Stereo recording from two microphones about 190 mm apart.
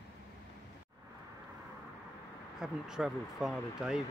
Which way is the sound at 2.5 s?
5° right (ahead or behind).